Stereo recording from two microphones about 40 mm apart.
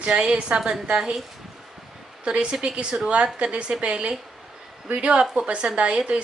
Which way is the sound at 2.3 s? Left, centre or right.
Right.